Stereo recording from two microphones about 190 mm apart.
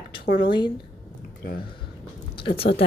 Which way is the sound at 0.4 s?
25° left (ahead or behind).